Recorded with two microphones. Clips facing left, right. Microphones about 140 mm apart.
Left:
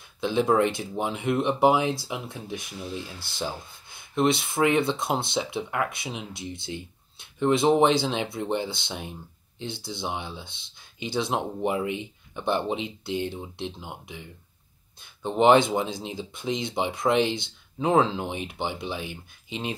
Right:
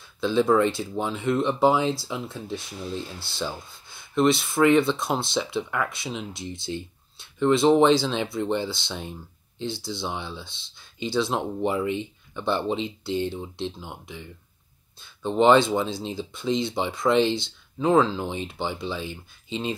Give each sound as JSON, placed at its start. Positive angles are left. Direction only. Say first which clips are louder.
{"t": 0.2, "sound": "speech", "louder": "right 2 dB", "side_deg": 15}